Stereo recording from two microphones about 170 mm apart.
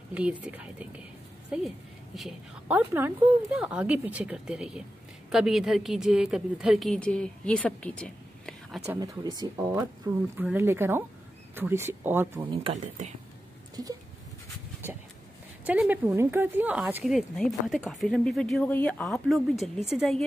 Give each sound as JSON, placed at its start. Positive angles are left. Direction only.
{"t": 0.1, "sound": "speech", "side_deg": -10}
{"t": 8.9, "sound": "speech", "side_deg": -20}
{"t": 12.7, "sound": "speech", "side_deg": -45}
{"t": 15.6, "sound": "speech", "side_deg": -10}